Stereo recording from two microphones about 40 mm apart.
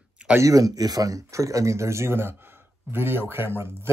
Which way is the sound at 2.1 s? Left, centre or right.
Right.